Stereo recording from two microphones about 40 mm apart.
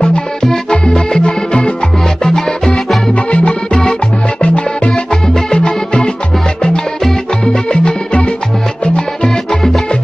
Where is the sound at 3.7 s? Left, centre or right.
Centre.